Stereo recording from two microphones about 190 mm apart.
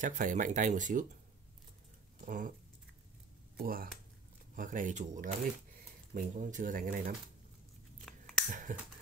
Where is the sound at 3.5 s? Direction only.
50° right (ahead or behind).